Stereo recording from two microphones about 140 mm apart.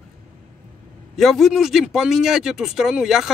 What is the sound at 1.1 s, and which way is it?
Speech, centre (ahead or behind).